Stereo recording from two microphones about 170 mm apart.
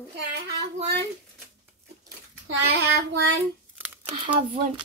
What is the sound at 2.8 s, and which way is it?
Child singing, 80° right.